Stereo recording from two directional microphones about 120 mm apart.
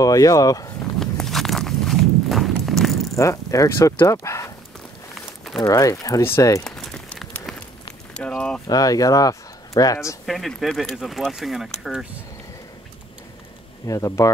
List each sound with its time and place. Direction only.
0.0 s speech: 30° left (ahead or behind)
0.9 s walk: 5° left (ahead or behind)
3.2 s speech: 25° left (ahead or behind)
5.7 s speech: 30° left (ahead or behind)
6.6 s crumpling: 5° left (ahead or behind)
8.1 s a sound: 10° left (ahead or behind)
8.6 s speech: 30° left (ahead or behind)
10.2 s speech: centre (ahead or behind)
13.8 s speech: 25° left (ahead or behind)